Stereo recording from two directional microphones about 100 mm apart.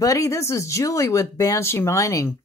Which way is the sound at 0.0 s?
35° left (ahead or behind).